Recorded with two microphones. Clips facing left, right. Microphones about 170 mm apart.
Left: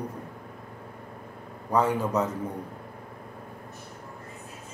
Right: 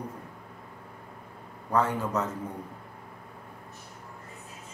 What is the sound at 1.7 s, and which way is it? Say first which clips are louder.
Speech: left 3 dB; 10° left (ahead or behind).